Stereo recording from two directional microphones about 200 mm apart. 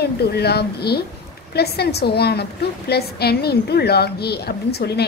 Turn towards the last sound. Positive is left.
turn(degrees=55)  # may be behind; listen again after turning